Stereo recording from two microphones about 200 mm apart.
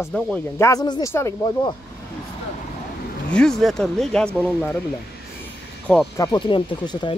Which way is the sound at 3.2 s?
5° left (ahead or behind).